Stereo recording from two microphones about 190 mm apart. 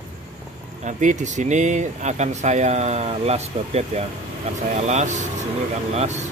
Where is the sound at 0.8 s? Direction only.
40° right (ahead or behind).